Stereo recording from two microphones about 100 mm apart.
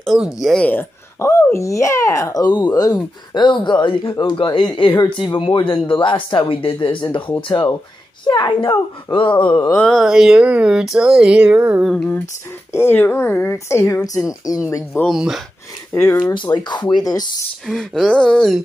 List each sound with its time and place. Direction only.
0.0 s speech: 5° right (ahead or behind)
0.6 s speech: 15° left (ahead or behind)
1.2 s a child's voice: 30° left (ahead or behind)
2.4 s speech: 45° left (ahead or behind)
9.8 s speech: 5° left (ahead or behind); by 11.8 s 15° right (ahead or behind)
12.7 s speech: 20° left (ahead or behind); by 14.6 s 35° left (ahead or behind)
15.0 s speech: 5° right (ahead or behind)
15.9 s speech: 25° left (ahead or behind)
16.3 s speech: 40° left (ahead or behind)
17.6 s speech: 5° left (ahead or behind)